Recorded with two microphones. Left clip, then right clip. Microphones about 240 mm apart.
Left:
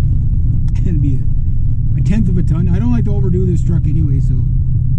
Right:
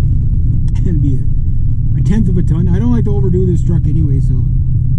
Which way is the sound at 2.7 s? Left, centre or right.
Right.